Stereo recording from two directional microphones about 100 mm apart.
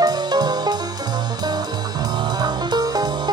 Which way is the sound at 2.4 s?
45° right (ahead or behind).